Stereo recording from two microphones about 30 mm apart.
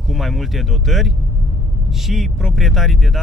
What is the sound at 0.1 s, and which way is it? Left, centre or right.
Speech, centre.